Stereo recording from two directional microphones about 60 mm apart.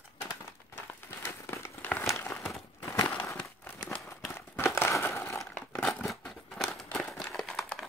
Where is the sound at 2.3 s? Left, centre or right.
Left.